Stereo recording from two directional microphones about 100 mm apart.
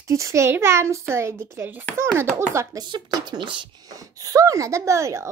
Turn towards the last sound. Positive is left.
turn(degrees=-30)  # may be behind; listen again after turning